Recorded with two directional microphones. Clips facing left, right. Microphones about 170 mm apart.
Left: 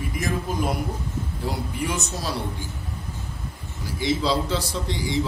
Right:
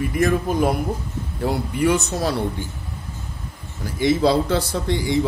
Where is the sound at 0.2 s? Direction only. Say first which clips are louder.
Right 9 dB; 60° right (ahead or behind).